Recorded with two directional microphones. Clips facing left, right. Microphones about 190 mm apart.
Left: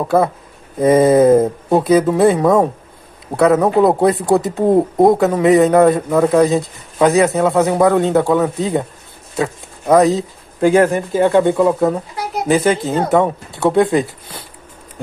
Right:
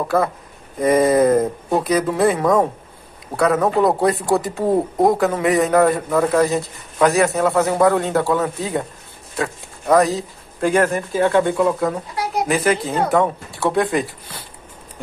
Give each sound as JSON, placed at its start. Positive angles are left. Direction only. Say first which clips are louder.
{"t": 0.7, "sound": "speech", "louder": "left 4 dB", "side_deg": 25}